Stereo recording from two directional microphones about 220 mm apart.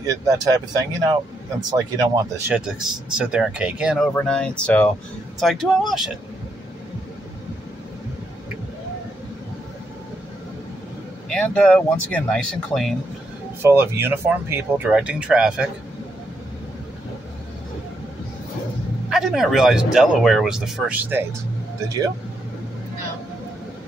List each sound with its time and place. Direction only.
0.0 s speech: 15° right (ahead or behind)
1.6 s speech: 15° right (ahead or behind); by 6.0 s centre (ahead or behind)
11.2 s speech: 5° left (ahead or behind)
13.6 s speech: 10° right (ahead or behind)
19.0 s speech: centre (ahead or behind)